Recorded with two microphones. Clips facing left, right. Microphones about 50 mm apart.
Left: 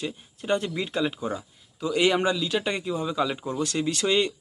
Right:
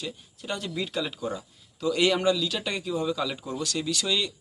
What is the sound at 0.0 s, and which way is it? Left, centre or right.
Speech, left.